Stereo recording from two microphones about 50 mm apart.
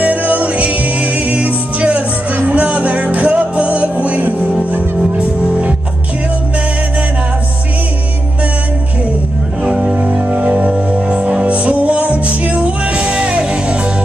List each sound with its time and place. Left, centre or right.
0.0 s music: right
9.6 s music: centre